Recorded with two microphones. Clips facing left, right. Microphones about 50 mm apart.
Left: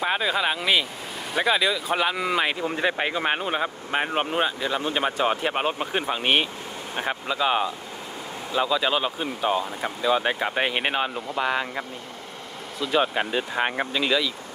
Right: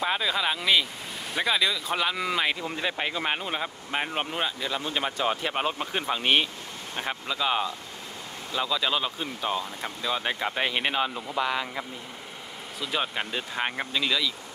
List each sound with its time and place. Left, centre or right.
0.0 s speech: centre
12.8 s speech: centre